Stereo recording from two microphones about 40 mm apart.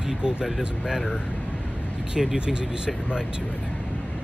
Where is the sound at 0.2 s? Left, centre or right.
Right.